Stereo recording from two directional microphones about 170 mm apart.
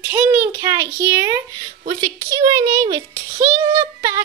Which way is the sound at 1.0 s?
20° right (ahead or behind).